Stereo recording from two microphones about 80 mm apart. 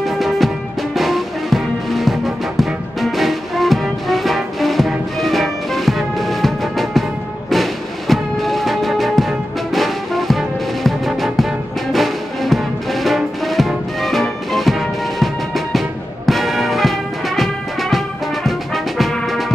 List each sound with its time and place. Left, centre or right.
0.0 s music: centre
18.9 s brass instrument: centre